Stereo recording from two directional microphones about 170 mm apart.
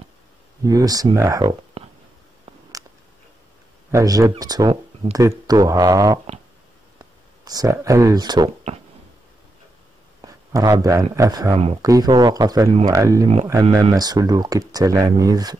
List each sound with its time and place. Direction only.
0.7 s speech: 20° right (ahead or behind)
1.8 s a sound: 35° right (ahead or behind)
3.9 s speech: 20° right (ahead or behind)
10.2 s speech: 20° right (ahead or behind)